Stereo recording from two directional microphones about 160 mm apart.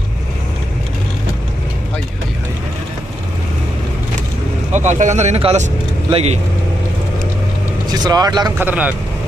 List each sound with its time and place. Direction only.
4.7 s speech: 50° right (ahead or behind)
8.0 s speech: 25° right (ahead or behind)
8.5 s speech: 10° right (ahead or behind)